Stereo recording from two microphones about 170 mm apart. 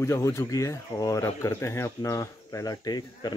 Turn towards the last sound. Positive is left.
turn(degrees=25)  # may be behind; listen again after turning